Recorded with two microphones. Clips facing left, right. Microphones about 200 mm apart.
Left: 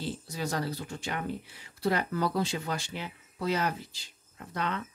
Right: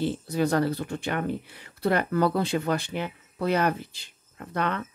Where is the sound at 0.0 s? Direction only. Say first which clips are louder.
Right 9 dB; 60° right (ahead or behind).